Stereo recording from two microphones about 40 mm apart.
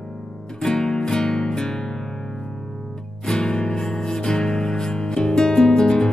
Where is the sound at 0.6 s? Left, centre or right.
Centre.